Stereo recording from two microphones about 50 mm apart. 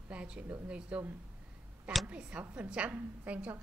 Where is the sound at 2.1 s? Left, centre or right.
Right.